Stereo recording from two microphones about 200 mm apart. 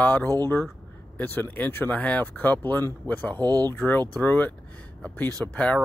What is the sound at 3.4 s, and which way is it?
Speech, 20° right (ahead or behind).